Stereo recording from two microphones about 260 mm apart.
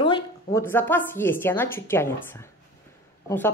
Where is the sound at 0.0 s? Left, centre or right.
Centre.